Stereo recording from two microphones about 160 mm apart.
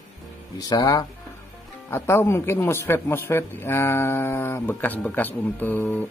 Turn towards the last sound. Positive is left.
turn(degrees=10)  # may be behind; listen again after turning